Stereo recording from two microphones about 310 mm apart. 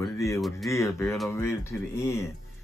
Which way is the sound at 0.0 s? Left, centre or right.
Centre.